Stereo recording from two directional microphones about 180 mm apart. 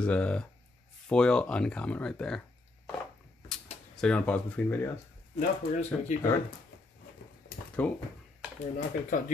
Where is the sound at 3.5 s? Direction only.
5° left (ahead or behind).